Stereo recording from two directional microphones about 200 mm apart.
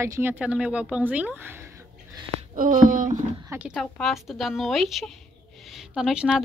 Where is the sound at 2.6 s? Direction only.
40° right (ahead or behind).